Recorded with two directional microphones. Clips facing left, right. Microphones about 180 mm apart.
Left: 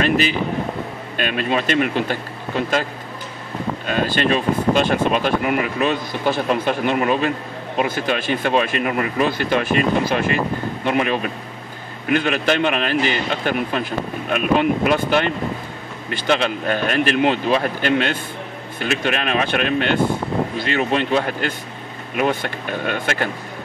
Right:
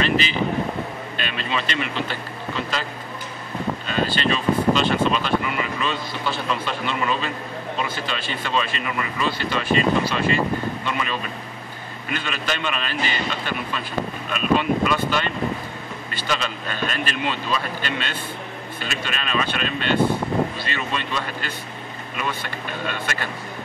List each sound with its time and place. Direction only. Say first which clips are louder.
0.0 s a man's voice: left 3 dB; 50° left (ahead or behind)